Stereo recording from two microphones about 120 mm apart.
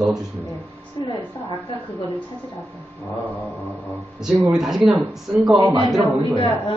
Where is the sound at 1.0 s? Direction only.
40° left (ahead or behind).